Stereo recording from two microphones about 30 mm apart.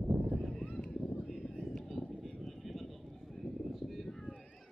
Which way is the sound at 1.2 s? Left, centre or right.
Centre.